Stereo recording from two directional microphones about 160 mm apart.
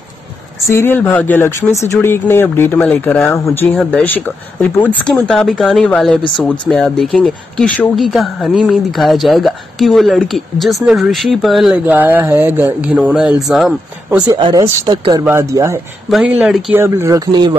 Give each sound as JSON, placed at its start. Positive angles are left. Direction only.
{"t": 0.7, "sound": "speech", "side_deg": 15}
{"t": 14.2, "sound": "speech", "side_deg": -25}
{"t": 16.1, "sound": "speech", "side_deg": 0}
{"t": 16.7, "sound": "speech", "side_deg": -15}